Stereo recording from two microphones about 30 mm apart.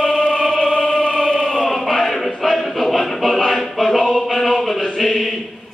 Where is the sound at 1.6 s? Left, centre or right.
Centre.